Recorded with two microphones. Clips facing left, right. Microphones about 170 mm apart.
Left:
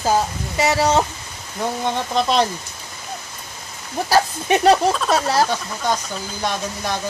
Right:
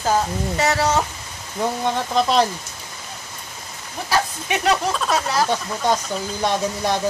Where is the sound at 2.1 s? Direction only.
5° right (ahead or behind).